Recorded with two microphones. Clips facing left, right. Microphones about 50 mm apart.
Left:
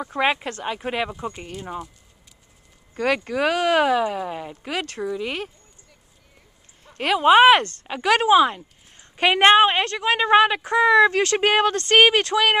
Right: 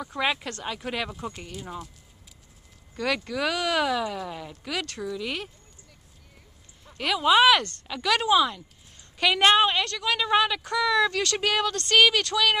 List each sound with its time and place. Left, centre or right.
0.0 s speech: left
1.1 s speech: centre
2.9 s a sound: left
3.3 s speech: left
6.8 s speech: left